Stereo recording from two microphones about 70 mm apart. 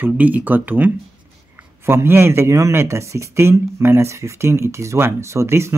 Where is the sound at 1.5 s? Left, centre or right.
Right.